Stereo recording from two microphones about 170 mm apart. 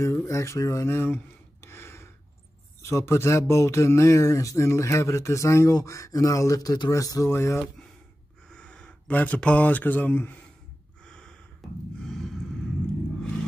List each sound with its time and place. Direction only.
0.0 s speech: 15° left (ahead or behind)
11.1 s gasp: 5° left (ahead or behind)